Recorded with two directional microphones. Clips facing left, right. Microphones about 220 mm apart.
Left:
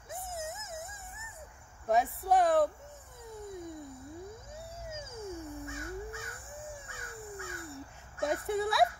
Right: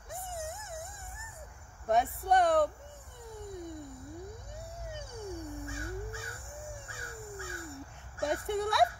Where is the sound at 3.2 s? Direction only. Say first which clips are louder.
Even; centre (ahead or behind).